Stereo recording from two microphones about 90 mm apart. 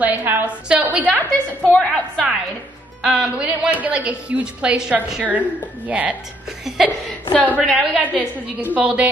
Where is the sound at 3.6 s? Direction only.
15° right (ahead or behind).